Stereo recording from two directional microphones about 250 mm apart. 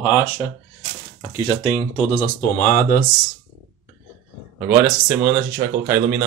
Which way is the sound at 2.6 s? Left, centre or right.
Left.